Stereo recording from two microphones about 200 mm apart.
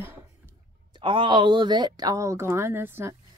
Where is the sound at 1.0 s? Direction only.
25° right (ahead or behind).